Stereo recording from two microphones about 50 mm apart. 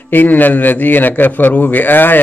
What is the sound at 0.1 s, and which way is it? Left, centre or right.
A man's voice, left.